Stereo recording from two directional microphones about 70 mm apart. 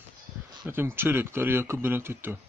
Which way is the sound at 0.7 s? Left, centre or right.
Right.